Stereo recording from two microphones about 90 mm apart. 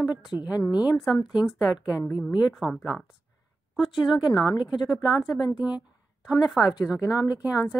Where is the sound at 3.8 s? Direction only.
Centre (ahead or behind).